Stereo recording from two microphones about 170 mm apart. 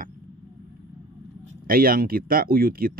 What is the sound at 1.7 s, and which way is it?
Speech, 60° right (ahead or behind).